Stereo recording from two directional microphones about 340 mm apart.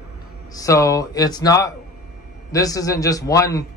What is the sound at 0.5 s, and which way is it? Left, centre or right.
Speech, centre.